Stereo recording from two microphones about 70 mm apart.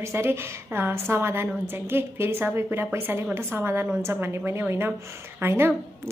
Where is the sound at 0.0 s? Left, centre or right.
Right.